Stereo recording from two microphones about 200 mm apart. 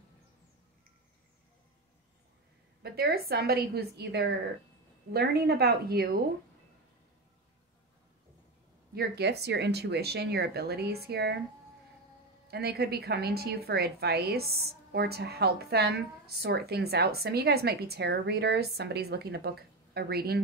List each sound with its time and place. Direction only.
2.8 s a woman's voice: 50° right (ahead or behind)
8.9 s speech: 55° right (ahead or behind)
12.4 s a woman's voice: 50° right (ahead or behind)